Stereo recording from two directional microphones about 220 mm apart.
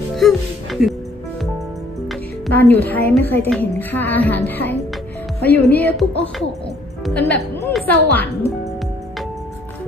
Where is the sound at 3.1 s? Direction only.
10° left (ahead or behind).